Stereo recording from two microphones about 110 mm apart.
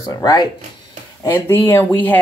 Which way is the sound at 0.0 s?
35° left (ahead or behind).